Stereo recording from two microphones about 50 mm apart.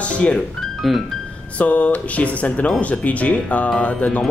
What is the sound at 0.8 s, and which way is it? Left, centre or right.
Speech, centre.